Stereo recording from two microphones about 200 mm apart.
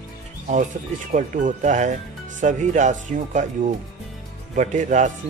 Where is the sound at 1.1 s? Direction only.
40° right (ahead or behind).